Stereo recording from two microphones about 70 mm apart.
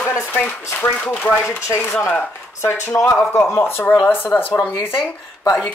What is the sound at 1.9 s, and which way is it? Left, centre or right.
Speech, left.